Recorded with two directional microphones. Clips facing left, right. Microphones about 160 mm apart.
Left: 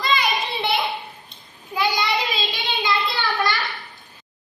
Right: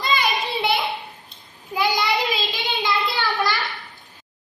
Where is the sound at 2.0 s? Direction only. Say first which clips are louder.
Right 1 dB; centre (ahead or behind).